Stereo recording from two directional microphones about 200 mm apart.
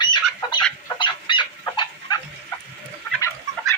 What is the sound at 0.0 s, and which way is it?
Fowl, 20° left (ahead or behind).